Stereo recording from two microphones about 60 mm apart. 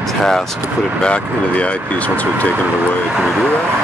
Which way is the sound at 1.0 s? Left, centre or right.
Centre.